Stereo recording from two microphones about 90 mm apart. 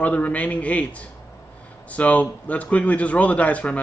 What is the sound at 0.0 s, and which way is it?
A man's voice, 15° left (ahead or behind).